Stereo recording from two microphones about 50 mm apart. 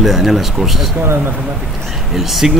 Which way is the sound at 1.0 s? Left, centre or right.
Right.